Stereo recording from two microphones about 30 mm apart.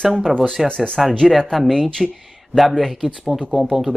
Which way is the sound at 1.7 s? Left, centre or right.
Centre.